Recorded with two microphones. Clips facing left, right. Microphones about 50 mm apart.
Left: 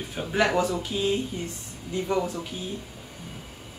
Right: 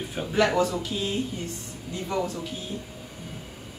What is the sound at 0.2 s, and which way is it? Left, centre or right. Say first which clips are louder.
Speech: right 1 dB; centre.